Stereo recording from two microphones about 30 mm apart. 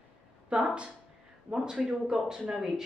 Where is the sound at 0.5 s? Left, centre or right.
Right.